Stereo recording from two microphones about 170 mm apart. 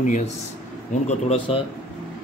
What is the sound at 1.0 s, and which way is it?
Speech, 35° left (ahead or behind).